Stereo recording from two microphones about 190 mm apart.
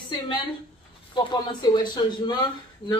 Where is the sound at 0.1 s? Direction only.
30° left (ahead or behind).